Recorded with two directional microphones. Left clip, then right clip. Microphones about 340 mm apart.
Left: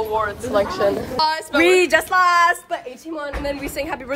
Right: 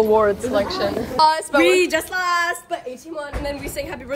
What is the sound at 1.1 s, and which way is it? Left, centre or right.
Speech, centre.